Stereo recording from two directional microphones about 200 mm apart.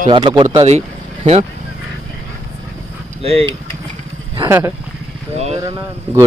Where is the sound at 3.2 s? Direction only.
30° right (ahead or behind).